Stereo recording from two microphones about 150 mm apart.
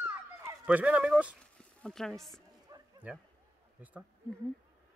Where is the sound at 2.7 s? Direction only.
20° right (ahead or behind).